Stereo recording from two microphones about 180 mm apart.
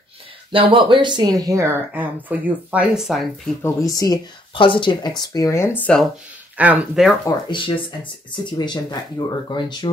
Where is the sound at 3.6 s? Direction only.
20° left (ahead or behind).